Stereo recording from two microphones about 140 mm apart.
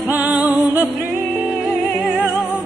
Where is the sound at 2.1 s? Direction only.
10° right (ahead or behind).